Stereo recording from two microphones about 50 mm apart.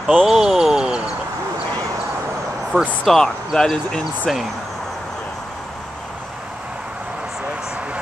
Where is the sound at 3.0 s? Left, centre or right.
Centre.